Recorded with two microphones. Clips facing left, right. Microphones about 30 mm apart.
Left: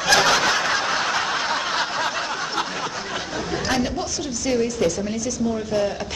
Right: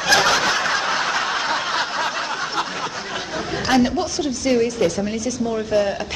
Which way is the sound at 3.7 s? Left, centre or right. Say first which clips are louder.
Right 8 dB; centre.